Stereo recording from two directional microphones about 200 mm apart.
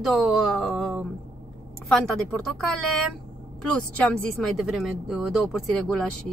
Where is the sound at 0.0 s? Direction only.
Centre (ahead or behind).